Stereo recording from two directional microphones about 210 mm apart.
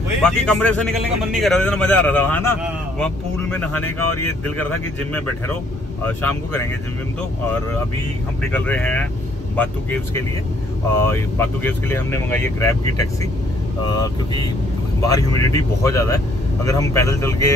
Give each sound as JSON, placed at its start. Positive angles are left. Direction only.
{"t": 0.2, "sound": "a man's voice", "side_deg": 5}
{"t": 8.5, "sound": "speech", "side_deg": 5}